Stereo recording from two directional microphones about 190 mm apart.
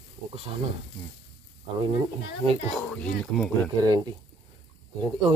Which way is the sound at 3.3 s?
5° left (ahead or behind).